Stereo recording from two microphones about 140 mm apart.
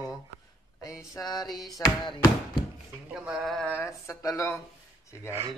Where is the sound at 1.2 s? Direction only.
20° left (ahead or behind).